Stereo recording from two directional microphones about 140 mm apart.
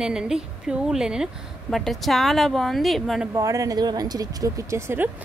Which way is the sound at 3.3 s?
25° right (ahead or behind).